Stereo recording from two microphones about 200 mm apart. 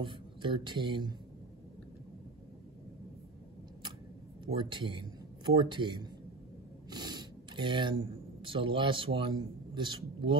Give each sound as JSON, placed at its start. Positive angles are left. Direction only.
{"t": 0.0, "sound": "speech", "side_deg": -25}
{"t": 4.5, "sound": "speech", "side_deg": -25}